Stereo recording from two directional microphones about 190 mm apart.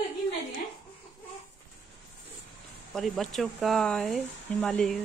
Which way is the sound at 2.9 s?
Centre (ahead or behind).